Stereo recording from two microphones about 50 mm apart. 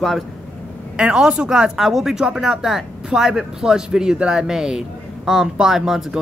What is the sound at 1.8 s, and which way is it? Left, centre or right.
A man's voice, centre.